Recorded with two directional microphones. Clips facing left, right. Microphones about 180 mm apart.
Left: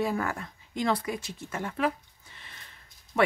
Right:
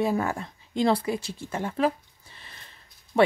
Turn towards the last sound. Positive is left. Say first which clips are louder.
# right 4 dB
turn(degrees=-30)  # may be behind; listen again after turning